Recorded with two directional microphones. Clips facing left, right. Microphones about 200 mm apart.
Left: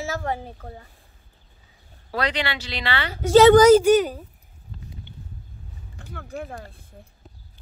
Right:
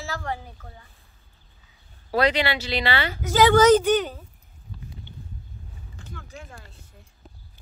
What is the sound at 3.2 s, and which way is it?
Speech, 30° left (ahead or behind).